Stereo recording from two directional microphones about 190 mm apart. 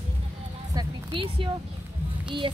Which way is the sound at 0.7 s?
25° right (ahead or behind).